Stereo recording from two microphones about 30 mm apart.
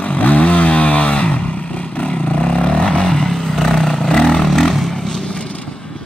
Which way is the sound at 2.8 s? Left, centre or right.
Left.